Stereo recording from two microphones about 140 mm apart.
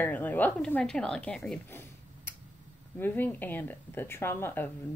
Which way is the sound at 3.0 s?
15° left (ahead or behind).